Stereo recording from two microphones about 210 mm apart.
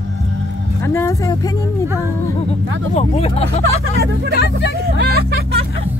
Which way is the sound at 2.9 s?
30° left (ahead or behind).